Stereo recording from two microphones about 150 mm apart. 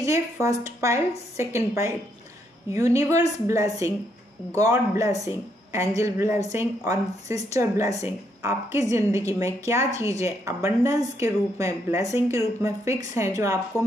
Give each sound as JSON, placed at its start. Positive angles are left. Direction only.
{"t": 0.0, "sound": "a woman's voice", "side_deg": -20}